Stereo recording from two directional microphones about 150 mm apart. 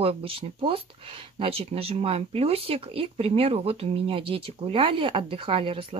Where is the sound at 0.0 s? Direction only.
40° right (ahead or behind).